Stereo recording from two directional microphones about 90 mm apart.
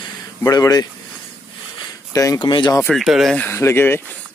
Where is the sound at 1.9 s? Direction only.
40° left (ahead or behind).